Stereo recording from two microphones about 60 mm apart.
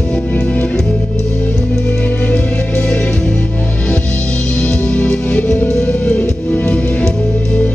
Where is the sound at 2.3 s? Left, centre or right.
Left.